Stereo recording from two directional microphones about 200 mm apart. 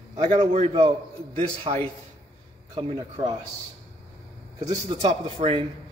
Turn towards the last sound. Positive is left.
turn(degrees=-30)  # may be behind; listen again after turning